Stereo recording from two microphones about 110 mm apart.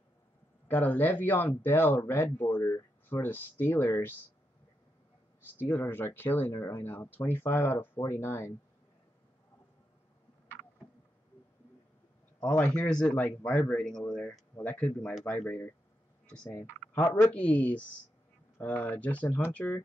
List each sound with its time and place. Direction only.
0.7 s speech: 15° left (ahead or behind)
5.4 s speech: 20° left (ahead or behind)
12.4 s speech: 10° left (ahead or behind)